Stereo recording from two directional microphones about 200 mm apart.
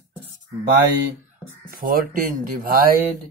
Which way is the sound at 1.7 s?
45° right (ahead or behind).